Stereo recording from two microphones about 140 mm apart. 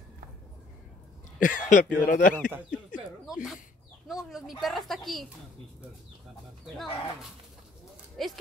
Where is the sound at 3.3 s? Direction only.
5° right (ahead or behind).